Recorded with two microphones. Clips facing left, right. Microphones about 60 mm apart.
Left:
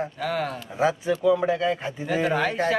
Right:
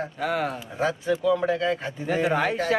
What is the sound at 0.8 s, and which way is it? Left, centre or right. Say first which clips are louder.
A man's voice: left 2 dB; centre.